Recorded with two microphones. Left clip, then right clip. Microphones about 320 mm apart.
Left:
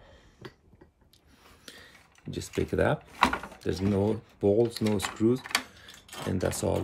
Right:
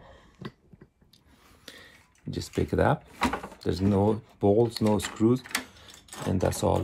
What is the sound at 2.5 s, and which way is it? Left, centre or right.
Speech, centre.